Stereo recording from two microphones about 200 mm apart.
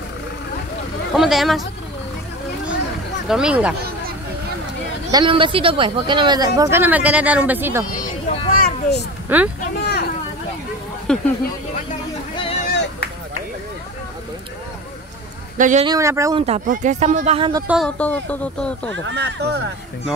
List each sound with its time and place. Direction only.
1.1 s speech: centre (ahead or behind)
3.3 s speech: 5° right (ahead or behind)
5.1 s speech: 25° right (ahead or behind)
8.3 s a sound: 45° left (ahead or behind)
9.3 s speech: 10° right (ahead or behind)
9.8 s a sound: 55° left (ahead or behind)
11.1 s speech: 5° left (ahead or behind)
12.6 s a sound: 50° left (ahead or behind)
15.5 s speech: 40° right (ahead or behind)
15.8 s speech: 15° right (ahead or behind)
16.3 s speech: 30° right (ahead or behind)
17.4 s speech: 20° right (ahead or behind)
17.6 s speech: centre (ahead or behind)
19.0 s speech: 60° right (ahead or behind)